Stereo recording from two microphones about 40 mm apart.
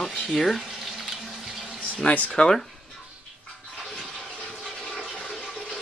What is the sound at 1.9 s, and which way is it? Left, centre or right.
Speech, left.